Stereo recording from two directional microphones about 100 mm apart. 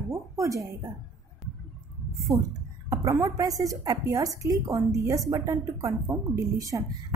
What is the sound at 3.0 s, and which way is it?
A woman's voice, 35° right (ahead or behind).